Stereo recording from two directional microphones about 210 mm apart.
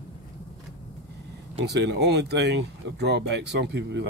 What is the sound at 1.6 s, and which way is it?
Speech, 50° right (ahead or behind).